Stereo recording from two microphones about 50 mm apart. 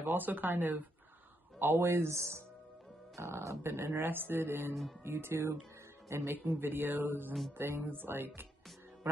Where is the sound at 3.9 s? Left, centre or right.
Right.